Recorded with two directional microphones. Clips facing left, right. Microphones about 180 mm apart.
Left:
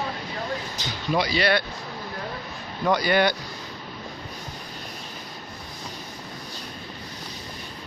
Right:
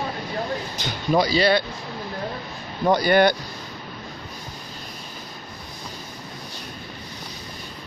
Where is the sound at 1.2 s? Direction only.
30° right (ahead or behind).